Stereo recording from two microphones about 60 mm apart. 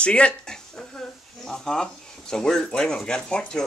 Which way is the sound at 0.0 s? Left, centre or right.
Centre.